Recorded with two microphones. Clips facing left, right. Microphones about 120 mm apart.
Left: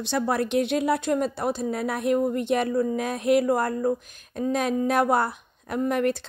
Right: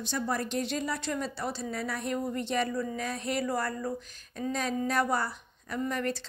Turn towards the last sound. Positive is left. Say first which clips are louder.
# left 8 dB
turn(degrees=60)  # may be behind; listen again after turning